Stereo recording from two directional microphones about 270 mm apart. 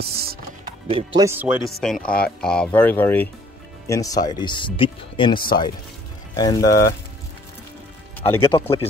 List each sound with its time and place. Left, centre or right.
0.0 s music: right
0.8 s speech: centre
8.3 s speech: centre